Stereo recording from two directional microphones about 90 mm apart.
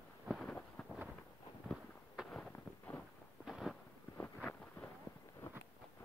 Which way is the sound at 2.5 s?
25° left (ahead or behind).